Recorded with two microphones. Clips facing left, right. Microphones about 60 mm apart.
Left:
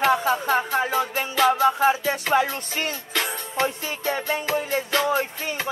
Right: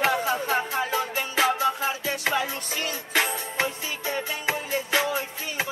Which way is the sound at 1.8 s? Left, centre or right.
Left.